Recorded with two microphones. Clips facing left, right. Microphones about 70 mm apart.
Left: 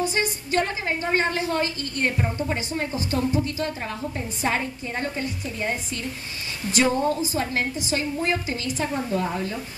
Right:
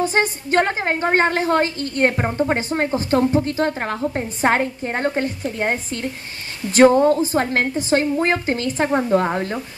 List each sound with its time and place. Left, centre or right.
0.0 s a woman's voice: right